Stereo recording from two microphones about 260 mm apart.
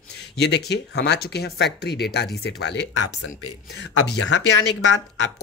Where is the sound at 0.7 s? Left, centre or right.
Left.